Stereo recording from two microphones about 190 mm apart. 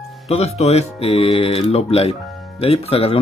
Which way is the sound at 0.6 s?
35° left (ahead or behind).